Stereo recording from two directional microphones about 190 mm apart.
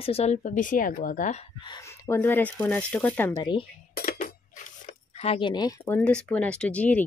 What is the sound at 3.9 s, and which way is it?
Cutlery, 45° left (ahead or behind).